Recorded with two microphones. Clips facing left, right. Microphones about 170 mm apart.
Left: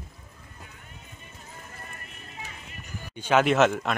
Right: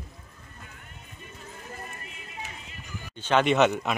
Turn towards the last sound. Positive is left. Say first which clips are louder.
# even
turn(degrees=0)  # may be behind; listen again after turning